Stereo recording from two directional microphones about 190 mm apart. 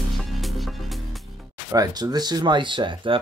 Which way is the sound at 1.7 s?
20° right (ahead or behind).